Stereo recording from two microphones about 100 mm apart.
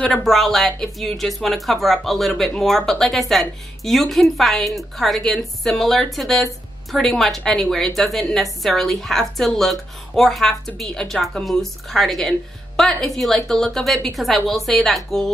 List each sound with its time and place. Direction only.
0.0 s speech: 5° left (ahead or behind)